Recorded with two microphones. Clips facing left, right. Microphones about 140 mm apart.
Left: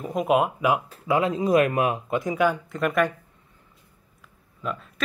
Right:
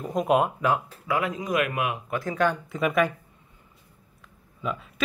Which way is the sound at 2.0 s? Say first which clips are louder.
Left 4 dB; 20° left (ahead or behind).